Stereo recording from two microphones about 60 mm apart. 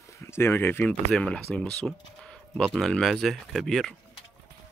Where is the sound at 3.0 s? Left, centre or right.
Centre.